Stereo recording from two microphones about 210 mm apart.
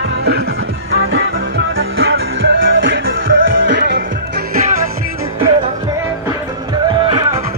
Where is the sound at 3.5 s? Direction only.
55° right (ahead or behind).